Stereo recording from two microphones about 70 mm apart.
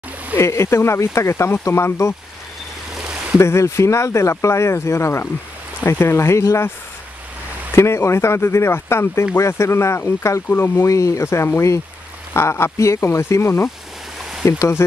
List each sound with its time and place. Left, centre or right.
0.4 s speech: left
3.3 s speech: left
7.7 s speech: left